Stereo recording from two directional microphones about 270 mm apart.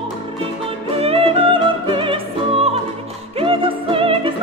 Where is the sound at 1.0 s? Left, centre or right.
Right.